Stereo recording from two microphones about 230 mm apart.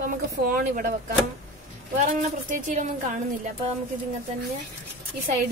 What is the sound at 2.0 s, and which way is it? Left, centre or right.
A woman's voice, right.